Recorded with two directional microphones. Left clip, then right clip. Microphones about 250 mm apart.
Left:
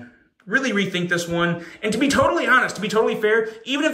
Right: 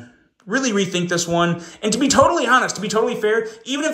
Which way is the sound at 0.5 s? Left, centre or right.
Centre.